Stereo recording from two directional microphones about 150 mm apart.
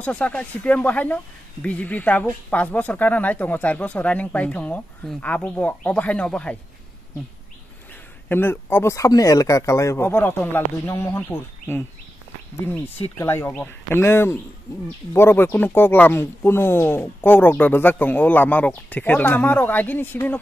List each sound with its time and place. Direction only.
0.0 s speech: 10° left (ahead or behind)
8.3 s speech: 15° left (ahead or behind)
13.2 s speech: 15° left (ahead or behind)